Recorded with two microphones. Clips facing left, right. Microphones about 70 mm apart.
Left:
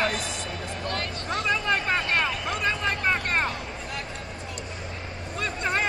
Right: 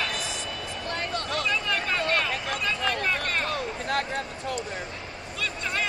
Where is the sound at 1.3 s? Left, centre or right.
Left.